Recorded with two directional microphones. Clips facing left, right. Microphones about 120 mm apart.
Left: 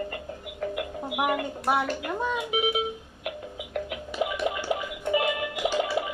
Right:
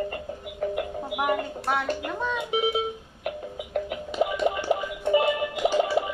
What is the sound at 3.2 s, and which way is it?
Music, 35° right (ahead or behind).